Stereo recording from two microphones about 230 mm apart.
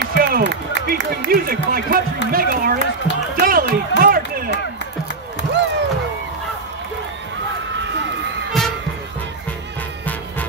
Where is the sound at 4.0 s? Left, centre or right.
Right.